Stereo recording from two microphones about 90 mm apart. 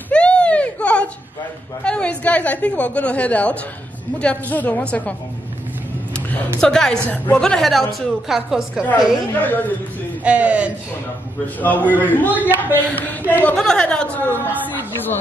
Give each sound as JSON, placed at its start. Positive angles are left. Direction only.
{"t": 0.1, "sound": "a sound", "side_deg": 10}
{"t": 1.9, "sound": "a woman's voice", "side_deg": 15}
{"t": 6.6, "sound": "a woman's voice", "side_deg": 5}
{"t": 8.8, "sound": "a woman's voice", "side_deg": 20}
{"t": 10.2, "sound": "speech", "side_deg": -15}
{"t": 11.4, "sound": "a woman's voice", "side_deg": 20}
{"t": 13.6, "sound": "a woman's voice", "side_deg": 10}